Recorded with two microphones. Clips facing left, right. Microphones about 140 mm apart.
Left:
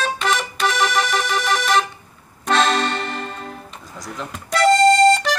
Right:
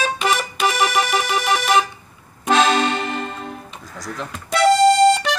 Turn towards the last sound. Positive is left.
turn(degrees=0)  # may be behind; listen again after turning